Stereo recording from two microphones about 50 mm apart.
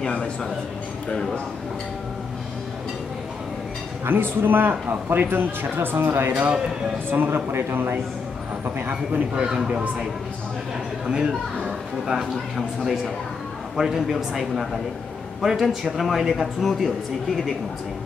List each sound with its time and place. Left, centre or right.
0.0 s speech: left
4.0 s a man's voice: right
9.3 s a man's voice: right
11.1 s a man's voice: centre